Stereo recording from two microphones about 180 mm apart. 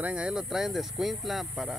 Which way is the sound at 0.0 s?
5° right (ahead or behind).